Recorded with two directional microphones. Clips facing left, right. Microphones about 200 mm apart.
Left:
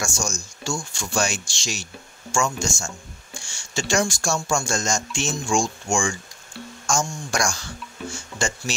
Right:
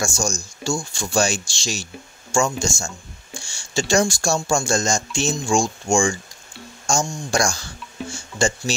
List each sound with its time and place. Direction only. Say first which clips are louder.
0.0 s speech: right 4 dB; 30° right (ahead or behind)